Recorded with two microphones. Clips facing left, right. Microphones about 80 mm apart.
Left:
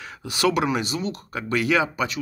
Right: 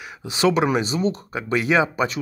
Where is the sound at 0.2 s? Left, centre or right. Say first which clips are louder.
Right 3 dB; right.